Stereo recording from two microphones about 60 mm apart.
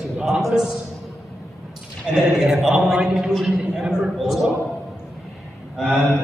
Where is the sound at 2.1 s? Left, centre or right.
Centre.